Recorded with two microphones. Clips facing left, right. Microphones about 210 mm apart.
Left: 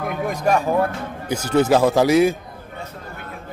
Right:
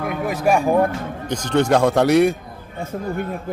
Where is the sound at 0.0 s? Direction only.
Centre (ahead or behind).